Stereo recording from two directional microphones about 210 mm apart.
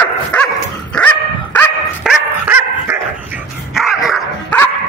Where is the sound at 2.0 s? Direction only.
5° right (ahead or behind).